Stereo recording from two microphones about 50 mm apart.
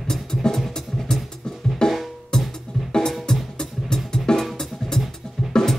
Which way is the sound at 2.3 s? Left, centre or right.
Centre.